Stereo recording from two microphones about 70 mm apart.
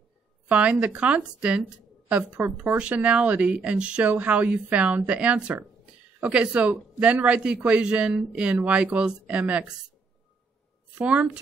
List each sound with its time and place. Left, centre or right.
0.5 s a woman's voice: centre
11.0 s speech: centre